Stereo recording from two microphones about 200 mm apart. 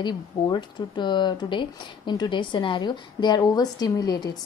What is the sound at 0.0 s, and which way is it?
Speech, 20° left (ahead or behind).